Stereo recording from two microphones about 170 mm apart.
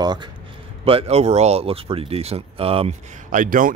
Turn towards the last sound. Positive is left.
turn(degrees=-55)  # may be behind; listen again after turning